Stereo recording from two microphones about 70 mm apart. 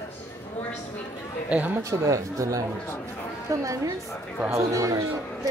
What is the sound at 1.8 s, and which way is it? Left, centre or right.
Speech, right.